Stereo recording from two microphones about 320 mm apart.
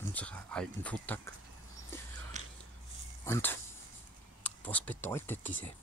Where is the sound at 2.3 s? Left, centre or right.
Right.